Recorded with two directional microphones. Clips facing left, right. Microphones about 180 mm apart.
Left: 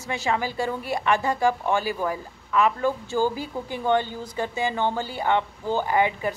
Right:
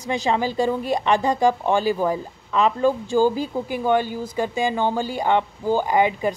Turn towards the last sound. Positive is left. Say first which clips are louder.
# right 3 dB
turn(degrees=-15)  # may be behind; listen again after turning